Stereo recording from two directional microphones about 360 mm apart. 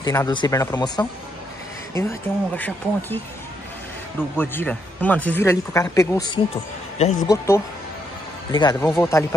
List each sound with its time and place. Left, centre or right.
0.0 s speech: centre
4.4 s speech: centre
8.5 s speech: centre